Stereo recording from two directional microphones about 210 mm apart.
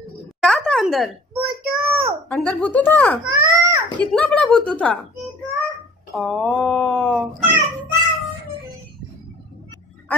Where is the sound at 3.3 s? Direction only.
15° right (ahead or behind).